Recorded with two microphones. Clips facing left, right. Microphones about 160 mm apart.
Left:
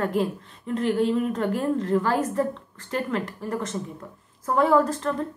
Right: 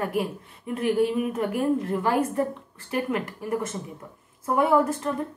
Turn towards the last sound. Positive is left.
turn(degrees=-15)  # may be behind; listen again after turning